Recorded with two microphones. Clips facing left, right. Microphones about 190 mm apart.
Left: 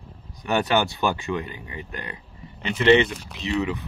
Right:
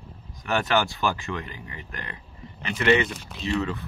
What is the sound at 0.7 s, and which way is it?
Speech, 20° left (ahead or behind).